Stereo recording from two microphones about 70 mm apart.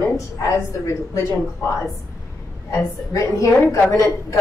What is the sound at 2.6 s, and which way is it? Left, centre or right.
A woman's voice, left.